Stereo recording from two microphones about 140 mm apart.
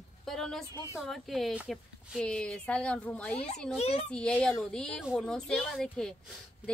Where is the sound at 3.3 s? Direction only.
55° left (ahead or behind).